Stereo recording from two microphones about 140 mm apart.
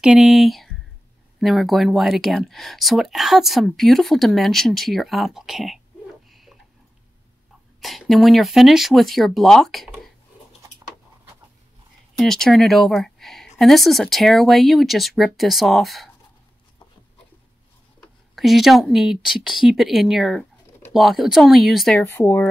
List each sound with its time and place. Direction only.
0.0 s speech: 5° right (ahead or behind)
7.8 s speech: centre (ahead or behind)
12.2 s speech: centre (ahead or behind)
18.3 s speech: centre (ahead or behind)
22.0 s speech: 15° left (ahead or behind)